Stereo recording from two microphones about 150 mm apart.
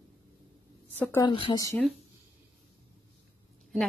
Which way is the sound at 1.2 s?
35° left (ahead or behind).